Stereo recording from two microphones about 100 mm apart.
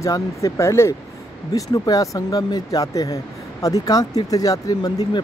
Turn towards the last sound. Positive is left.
turn(degrees=40)  # may be behind; listen again after turning